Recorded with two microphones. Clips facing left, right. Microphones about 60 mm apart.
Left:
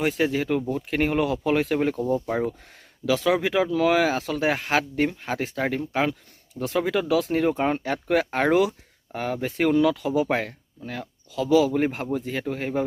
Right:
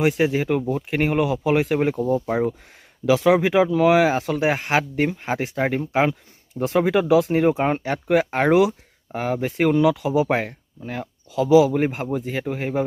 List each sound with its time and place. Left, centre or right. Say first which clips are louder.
0.0 s speech: right 4 dB; centre
3.1 s speech: right 5 dB; right